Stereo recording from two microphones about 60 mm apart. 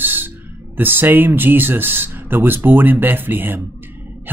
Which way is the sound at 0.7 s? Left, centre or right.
Right.